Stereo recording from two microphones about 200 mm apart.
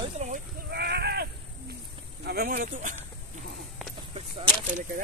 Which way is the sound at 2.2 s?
50° right (ahead or behind).